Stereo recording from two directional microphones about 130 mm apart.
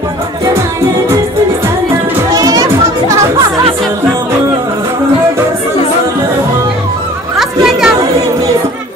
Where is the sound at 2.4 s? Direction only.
25° right (ahead or behind).